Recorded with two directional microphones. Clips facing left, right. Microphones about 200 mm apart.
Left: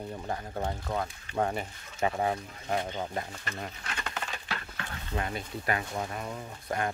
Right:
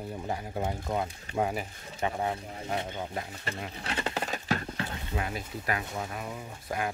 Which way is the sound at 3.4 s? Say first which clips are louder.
Right 3 dB; 30° right (ahead or behind).